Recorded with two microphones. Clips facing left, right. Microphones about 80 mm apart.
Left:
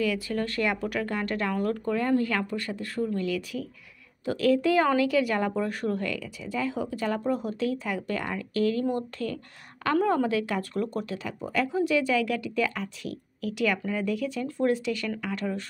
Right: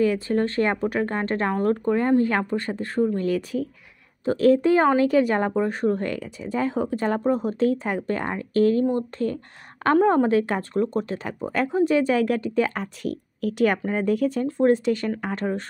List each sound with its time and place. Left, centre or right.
0.0 s speech: right